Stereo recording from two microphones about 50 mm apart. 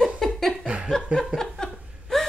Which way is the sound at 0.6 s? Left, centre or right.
Right.